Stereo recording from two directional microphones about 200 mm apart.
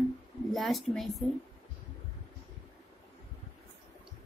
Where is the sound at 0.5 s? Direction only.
Centre (ahead or behind).